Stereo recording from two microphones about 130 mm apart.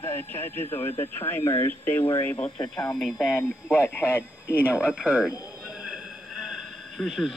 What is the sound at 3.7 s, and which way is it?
Speech, 15° left (ahead or behind).